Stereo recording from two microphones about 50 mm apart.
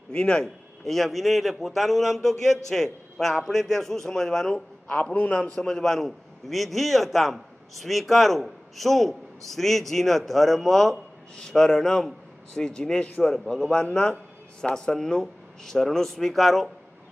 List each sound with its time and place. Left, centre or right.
0.1 s speech: centre
0.8 s a man's voice: centre
11.3 s a man's voice: centre